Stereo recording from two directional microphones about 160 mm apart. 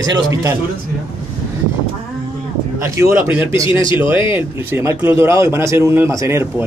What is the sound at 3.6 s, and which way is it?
Speech, 30° left (ahead or behind).